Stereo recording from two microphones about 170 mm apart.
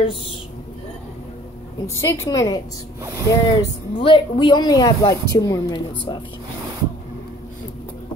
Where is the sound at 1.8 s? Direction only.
20° left (ahead or behind).